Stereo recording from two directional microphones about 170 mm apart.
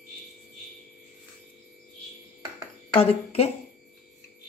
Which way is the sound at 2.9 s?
35° left (ahead or behind).